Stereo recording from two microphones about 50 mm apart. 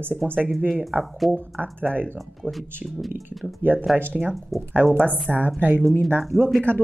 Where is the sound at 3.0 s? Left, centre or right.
Centre.